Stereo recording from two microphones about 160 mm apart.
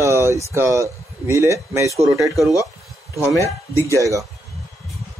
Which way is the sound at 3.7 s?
20° right (ahead or behind).